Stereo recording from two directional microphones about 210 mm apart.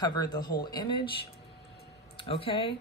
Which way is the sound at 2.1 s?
25° left (ahead or behind).